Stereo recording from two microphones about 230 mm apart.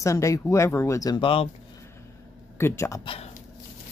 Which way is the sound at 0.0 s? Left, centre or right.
Centre.